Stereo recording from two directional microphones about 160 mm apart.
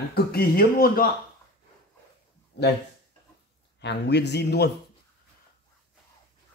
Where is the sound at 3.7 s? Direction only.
90° left.